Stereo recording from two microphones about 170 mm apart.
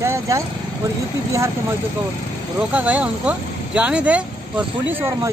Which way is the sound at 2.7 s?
10° right (ahead or behind).